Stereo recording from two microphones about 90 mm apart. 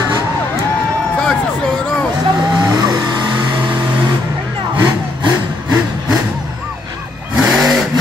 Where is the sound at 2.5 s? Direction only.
50° right (ahead or behind).